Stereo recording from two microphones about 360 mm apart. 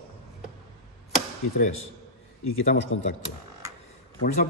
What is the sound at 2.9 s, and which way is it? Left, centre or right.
Speech, left.